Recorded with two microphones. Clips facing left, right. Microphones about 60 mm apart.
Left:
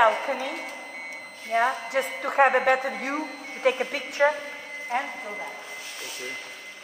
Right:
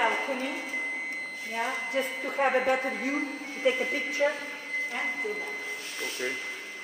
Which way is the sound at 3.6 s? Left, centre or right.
Left.